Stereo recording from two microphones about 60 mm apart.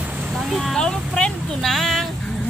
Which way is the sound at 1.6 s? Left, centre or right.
Centre.